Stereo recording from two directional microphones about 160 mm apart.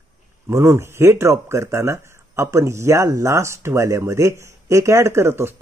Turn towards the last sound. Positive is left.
turn(degrees=-15)  # may be behind; listen again after turning